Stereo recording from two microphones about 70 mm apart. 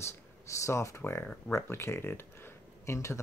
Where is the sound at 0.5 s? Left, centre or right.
Left.